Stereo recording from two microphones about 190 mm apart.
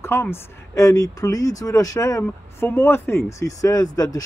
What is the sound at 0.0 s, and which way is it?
Speech, 15° left (ahead or behind).